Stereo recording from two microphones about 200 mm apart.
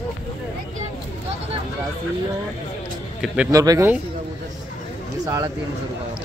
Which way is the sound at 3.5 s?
15° right (ahead or behind).